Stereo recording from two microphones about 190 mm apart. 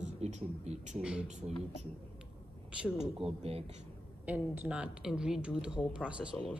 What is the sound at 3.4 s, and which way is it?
Speech, 30° right (ahead or behind).